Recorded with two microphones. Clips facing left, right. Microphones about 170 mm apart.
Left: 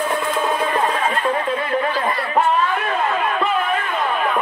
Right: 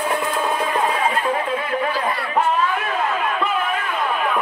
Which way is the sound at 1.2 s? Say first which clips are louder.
Left 1 dB; 5° right (ahead or behind).